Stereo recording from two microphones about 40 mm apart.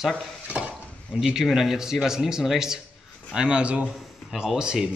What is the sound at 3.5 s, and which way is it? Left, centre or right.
Speech, right.